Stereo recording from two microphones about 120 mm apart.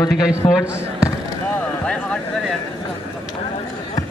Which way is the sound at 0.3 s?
5° right (ahead or behind).